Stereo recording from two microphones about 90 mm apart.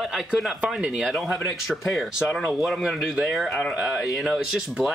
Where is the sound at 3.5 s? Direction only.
15° left (ahead or behind).